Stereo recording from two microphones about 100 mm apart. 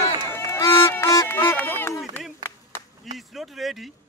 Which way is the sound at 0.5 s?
25° left (ahead or behind).